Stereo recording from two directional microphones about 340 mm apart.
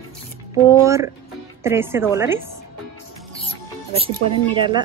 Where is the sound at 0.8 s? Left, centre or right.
Centre.